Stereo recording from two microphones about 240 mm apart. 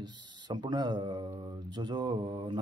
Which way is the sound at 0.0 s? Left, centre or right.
Centre.